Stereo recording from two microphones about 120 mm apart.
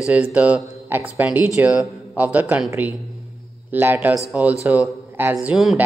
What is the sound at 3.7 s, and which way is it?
Speech, 15° right (ahead or behind).